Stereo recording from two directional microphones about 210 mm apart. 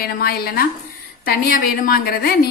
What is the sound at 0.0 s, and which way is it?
A woman's voice, 45° left (ahead or behind).